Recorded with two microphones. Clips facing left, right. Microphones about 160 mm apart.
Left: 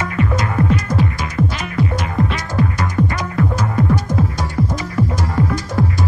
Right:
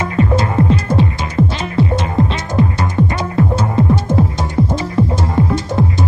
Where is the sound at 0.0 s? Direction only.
30° right (ahead or behind).